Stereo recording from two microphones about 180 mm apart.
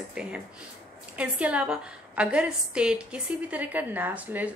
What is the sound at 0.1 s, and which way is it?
A woman's voice, 5° right (ahead or behind).